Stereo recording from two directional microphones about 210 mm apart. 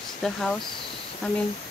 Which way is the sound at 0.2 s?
Centre (ahead or behind).